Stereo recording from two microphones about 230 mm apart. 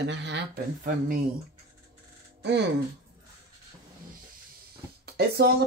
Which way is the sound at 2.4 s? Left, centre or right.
Right.